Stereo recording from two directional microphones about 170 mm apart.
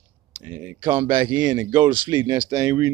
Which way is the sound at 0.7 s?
25° right (ahead or behind).